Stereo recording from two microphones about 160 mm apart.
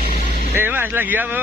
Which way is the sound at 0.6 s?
10° right (ahead or behind).